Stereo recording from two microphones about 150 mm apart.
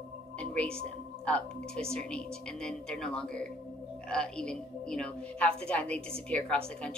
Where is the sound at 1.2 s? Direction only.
5° left (ahead or behind).